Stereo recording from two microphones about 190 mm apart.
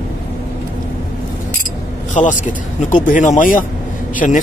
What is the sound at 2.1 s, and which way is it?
A man's voice, 40° left (ahead or behind).